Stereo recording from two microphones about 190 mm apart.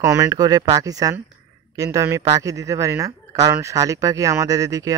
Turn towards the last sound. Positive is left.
turn(degrees=-15)  # may be behind; listen again after turning